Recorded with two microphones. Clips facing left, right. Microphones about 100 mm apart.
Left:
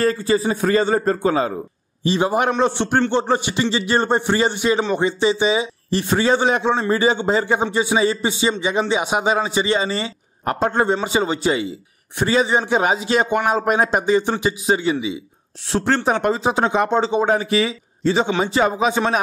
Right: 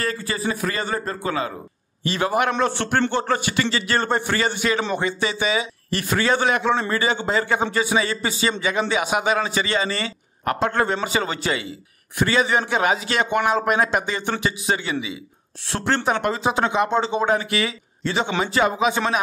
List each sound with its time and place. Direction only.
0.0 s a man's voice: 30° left (ahead or behind)
15.9 s speech: 35° left (ahead or behind)